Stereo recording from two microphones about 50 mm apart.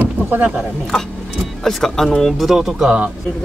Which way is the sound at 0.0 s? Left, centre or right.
Right.